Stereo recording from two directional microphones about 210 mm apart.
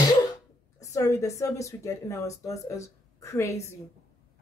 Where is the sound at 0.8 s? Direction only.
15° left (ahead or behind).